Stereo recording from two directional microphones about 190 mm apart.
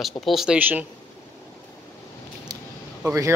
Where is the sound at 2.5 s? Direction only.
20° right (ahead or behind).